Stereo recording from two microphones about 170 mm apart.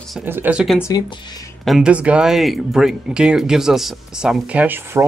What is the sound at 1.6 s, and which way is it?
Speech, 5° right (ahead or behind).